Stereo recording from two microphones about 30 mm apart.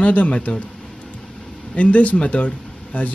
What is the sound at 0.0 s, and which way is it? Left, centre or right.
Speech, left.